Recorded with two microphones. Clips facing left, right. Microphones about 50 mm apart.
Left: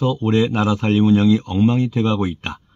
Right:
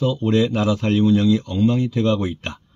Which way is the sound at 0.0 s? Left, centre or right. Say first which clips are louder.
Left 1 dB; left.